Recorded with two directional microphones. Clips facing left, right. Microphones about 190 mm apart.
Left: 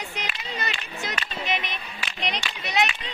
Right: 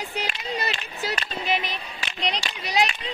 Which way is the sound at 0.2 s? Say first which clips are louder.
Right 4 dB; 35° right (ahead or behind).